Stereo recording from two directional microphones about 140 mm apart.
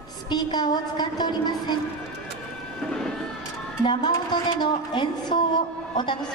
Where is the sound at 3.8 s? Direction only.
35° left (ahead or behind).